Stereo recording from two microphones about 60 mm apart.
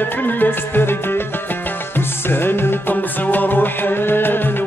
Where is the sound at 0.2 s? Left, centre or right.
Left.